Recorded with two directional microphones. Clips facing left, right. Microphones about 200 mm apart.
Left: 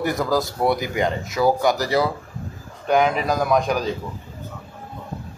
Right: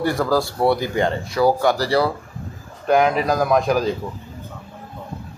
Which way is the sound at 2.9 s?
Centre (ahead or behind).